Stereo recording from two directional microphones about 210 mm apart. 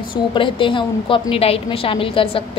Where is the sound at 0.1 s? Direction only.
25° left (ahead or behind).